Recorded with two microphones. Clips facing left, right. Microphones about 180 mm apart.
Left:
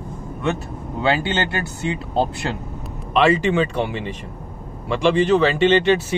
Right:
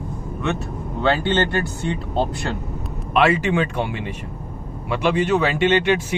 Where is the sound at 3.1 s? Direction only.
10° right (ahead or behind).